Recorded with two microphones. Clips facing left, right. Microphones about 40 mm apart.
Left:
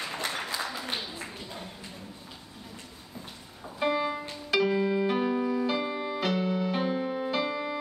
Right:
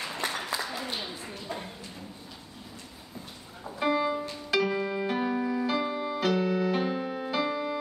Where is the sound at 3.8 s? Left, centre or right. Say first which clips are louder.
Right 1 dB; centre.